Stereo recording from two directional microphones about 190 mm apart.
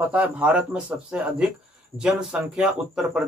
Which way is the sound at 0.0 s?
10° right (ahead or behind).